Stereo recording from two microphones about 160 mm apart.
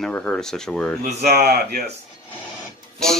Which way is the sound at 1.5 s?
80° right.